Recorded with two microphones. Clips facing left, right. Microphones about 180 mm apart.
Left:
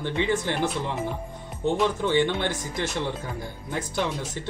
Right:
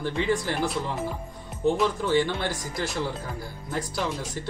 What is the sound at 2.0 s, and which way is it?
Speech, 20° left (ahead or behind).